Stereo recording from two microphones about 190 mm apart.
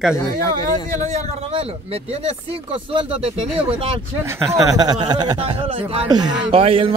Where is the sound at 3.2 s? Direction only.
30° right (ahead or behind).